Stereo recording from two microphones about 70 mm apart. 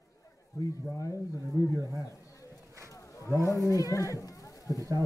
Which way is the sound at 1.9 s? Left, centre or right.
Left.